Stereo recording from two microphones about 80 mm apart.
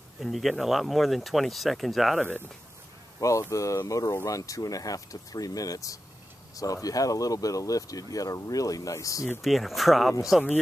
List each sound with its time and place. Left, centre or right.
0.2 s speech: centre
2.2 s speech: left
3.2 s speech: left
9.4 s speech: centre